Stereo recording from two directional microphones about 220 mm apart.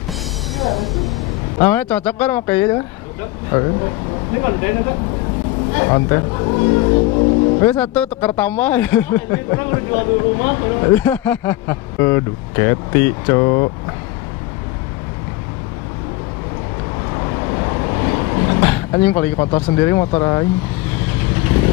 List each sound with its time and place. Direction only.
0.6 s speech: centre (ahead or behind)
4.4 s speech: 20° left (ahead or behind)
5.8 s speech: 15° left (ahead or behind)
7.6 s speech: 5° left (ahead or behind)
11.0 s speech: 10° left (ahead or behind)
17.1 s vehicle: 20° left (ahead or behind)
20.2 s speech: 15° left (ahead or behind)